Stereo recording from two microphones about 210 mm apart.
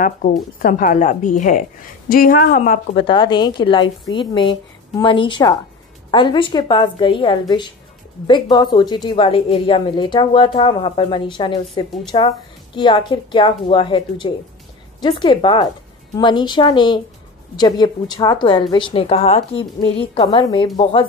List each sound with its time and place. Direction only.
0.0 s speech: 40° left (ahead or behind)
3.0 s a woman's voice: 25° left (ahead or behind)